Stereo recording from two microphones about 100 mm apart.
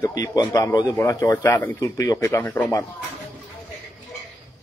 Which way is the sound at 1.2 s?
20° left (ahead or behind).